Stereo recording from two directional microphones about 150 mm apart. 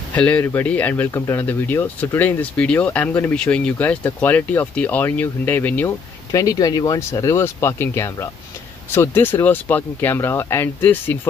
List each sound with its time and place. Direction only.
0.1 s speech: 10° left (ahead or behind)
6.3 s speech: 25° left (ahead or behind)